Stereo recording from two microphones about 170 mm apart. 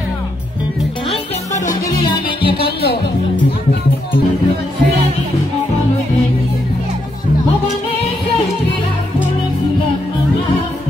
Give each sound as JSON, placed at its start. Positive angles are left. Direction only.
{"t": 2.4, "sound": "music", "side_deg": 70}